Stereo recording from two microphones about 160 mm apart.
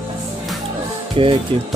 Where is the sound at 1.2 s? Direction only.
35° right (ahead or behind).